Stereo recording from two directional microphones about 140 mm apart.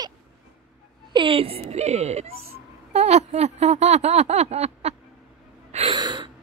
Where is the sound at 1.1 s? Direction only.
40° right (ahead or behind).